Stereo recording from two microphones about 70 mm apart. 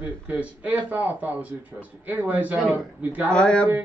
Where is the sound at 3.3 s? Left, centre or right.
Centre.